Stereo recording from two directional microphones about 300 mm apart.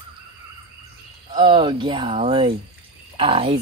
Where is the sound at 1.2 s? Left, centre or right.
Centre.